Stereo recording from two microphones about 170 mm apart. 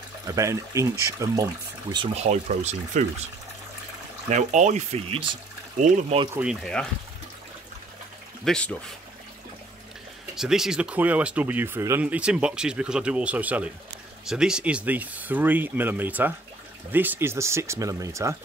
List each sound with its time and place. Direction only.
0.4 s speech: 20° right (ahead or behind)
2.1 s speech: 40° right (ahead or behind)
4.3 s speech: 45° right (ahead or behind)
6.4 s speech: centre (ahead or behind)
8.5 s speech: 5° left (ahead or behind)
10.3 s speech: centre (ahead or behind); by 18.3 s 20° right (ahead or behind)